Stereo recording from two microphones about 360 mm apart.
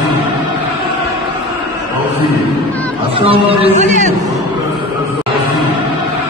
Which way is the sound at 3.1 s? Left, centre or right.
Centre.